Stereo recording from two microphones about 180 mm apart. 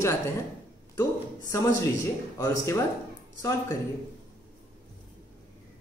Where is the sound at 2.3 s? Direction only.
20° left (ahead or behind).